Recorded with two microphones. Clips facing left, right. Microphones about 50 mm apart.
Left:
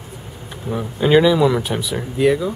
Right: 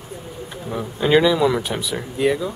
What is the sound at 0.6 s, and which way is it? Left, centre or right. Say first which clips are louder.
Speech: left 3 dB; centre.